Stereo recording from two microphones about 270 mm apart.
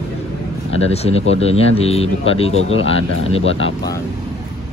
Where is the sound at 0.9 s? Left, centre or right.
Left.